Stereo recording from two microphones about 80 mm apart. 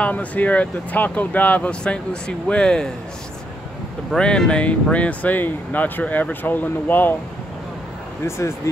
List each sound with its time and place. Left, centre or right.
0.0 s speech: centre
4.1 s speech: centre
8.3 s speech: left